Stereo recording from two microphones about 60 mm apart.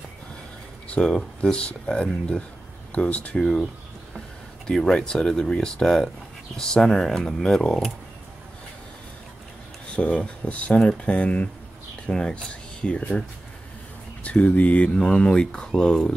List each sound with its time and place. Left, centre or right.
0.8 s speech: centre
3.3 s speech: centre
4.6 s speech: centre
10.0 s speech: centre
14.2 s speech: left
15.0 s speech: centre